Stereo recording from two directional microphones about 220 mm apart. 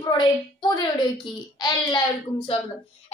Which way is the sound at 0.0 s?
20° left (ahead or behind).